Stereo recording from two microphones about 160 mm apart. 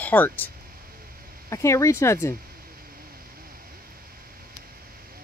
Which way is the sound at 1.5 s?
20° left (ahead or behind).